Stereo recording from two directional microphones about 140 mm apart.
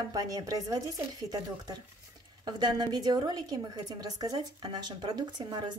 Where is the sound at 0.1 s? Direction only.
25° right (ahead or behind).